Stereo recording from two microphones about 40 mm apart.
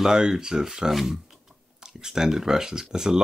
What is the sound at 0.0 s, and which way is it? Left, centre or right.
Speech, centre.